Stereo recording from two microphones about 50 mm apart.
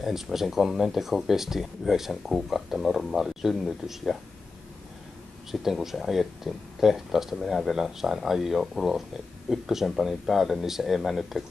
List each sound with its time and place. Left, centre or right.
0.0 s speech: centre
5.5 s speech: centre
7.3 s speech: centre
7.7 s speech: centre